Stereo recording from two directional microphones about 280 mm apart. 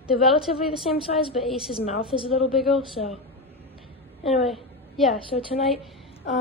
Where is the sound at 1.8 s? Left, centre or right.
Left.